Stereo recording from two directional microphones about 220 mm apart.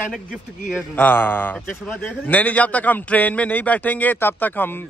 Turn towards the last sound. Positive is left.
turn(degrees=10)  # may be behind; listen again after turning